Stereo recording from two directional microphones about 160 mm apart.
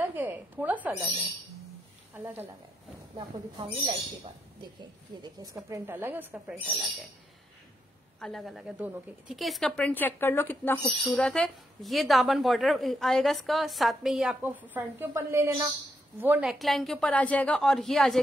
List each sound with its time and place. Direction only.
0.0 s a sound: 10° right (ahead or behind)
2.1 s a woman's voice: 10° right (ahead or behind)
5.2 s a woman's voice: 20° right (ahead or behind); by 7.1 s centre (ahead or behind)
8.2 s a woman's voice: centre (ahead or behind)